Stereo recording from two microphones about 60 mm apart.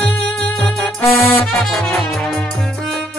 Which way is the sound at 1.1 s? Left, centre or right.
Left.